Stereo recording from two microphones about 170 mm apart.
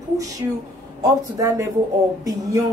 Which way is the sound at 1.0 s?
20° right (ahead or behind).